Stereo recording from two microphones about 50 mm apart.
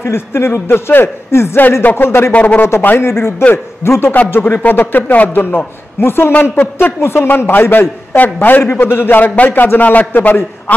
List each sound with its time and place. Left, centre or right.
0.0 s speech: left
2.3 s a man's voice: left
3.0 s speech: left
4.3 s a man's voice: left
7.0 s speech: left
7.2 s a man's voice: left
8.7 s a man's voice: left